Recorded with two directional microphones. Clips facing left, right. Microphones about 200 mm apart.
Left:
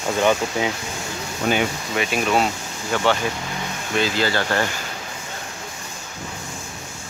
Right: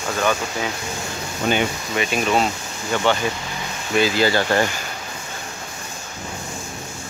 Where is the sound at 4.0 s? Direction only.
15° right (ahead or behind).